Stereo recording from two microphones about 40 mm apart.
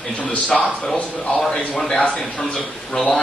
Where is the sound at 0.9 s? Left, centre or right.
Centre.